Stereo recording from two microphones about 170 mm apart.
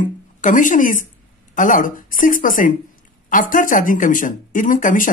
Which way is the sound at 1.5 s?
50° left (ahead or behind).